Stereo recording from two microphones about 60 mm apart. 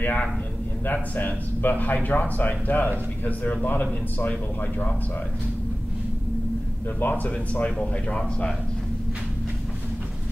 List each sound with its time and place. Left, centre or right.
0.0 s a man's voice: left
7.0 s speech: left